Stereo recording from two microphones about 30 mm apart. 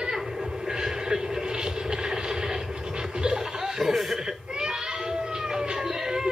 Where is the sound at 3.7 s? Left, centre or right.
Centre.